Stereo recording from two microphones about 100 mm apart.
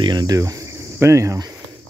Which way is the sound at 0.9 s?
30° right (ahead or behind).